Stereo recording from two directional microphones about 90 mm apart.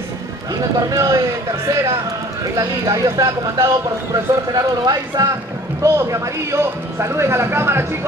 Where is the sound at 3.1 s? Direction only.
40° right (ahead or behind).